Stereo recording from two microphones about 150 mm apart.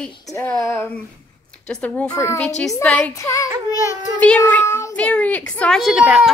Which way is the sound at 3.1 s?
20° left (ahead or behind).